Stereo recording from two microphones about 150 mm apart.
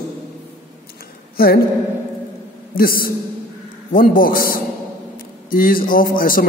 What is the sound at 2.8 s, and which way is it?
A man's voice, 75° left (ahead or behind).